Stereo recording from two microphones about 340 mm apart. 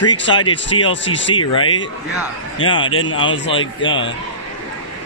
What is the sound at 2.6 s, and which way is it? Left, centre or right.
Speech, centre.